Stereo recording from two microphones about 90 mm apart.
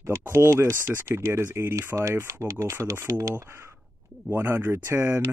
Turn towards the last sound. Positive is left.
turn(degrees=-25)  # may be behind; listen again after turning